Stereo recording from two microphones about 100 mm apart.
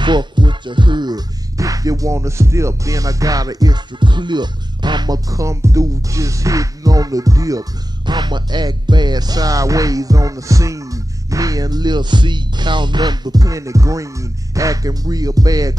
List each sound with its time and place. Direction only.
0.0 s speech: 50° right (ahead or behind)
8.1 s speech: 45° right (ahead or behind)